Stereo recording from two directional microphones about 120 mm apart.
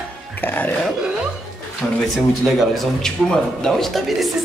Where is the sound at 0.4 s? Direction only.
15° left (ahead or behind).